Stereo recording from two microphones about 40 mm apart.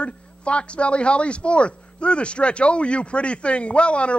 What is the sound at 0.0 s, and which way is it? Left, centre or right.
Speech, left.